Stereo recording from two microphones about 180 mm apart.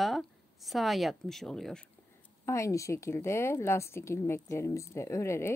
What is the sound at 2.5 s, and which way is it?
A woman's voice, 15° left (ahead or behind).